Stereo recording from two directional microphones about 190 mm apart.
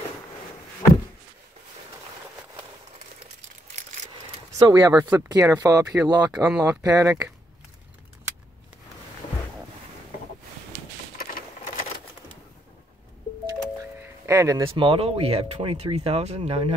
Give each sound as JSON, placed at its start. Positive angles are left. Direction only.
{"t": 4.6, "sound": "speech", "side_deg": -20}
{"t": 5.0, "sound": "speech", "side_deg": -10}
{"t": 6.3, "sound": "speech", "side_deg": -5}
{"t": 6.8, "sound": "speech", "side_deg": -15}
{"t": 11.1, "sound": "a sound", "side_deg": 50}
{"t": 14.0, "sound": "music", "side_deg": -15}
{"t": 14.7, "sound": "speech", "side_deg": -30}